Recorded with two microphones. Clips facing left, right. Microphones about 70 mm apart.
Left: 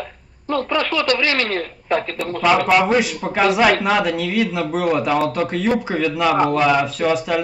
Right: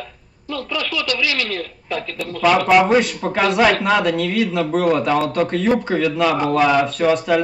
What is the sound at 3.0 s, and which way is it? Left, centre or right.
A man's voice, centre.